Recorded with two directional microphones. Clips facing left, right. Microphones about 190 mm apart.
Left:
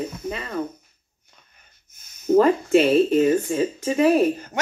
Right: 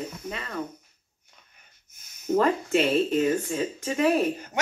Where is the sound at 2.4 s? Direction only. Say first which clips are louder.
Left 6 dB; 5° left (ahead or behind).